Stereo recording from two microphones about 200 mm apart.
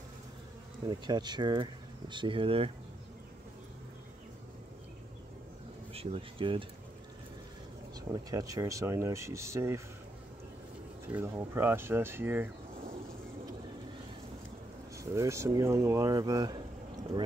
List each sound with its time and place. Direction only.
0.8 s speech: 20° right (ahead or behind)
5.9 s speech: 30° right (ahead or behind)
8.1 s speech: 20° right (ahead or behind)
11.1 s speech: 10° right (ahead or behind)
15.1 s speech: 15° right (ahead or behind)